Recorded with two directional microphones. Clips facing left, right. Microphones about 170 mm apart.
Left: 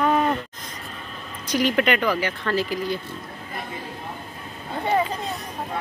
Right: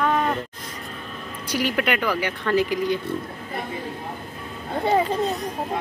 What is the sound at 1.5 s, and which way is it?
Speech, 10° right (ahead or behind).